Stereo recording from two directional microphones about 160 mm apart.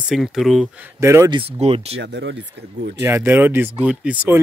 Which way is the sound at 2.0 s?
90° right.